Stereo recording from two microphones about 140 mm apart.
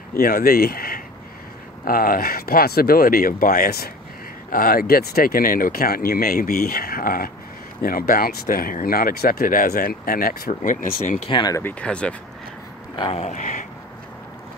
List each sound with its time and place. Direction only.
0.1 s speech: 90° left; by 11.1 s 70° left (ahead or behind)
11.2 s speech: 35° left (ahead or behind)
11.5 s speech: 10° left (ahead or behind)
13.0 s speech: 50° left (ahead or behind)